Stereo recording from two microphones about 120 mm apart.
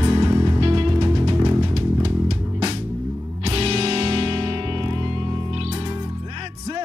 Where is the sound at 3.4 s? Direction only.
60° right (ahead or behind).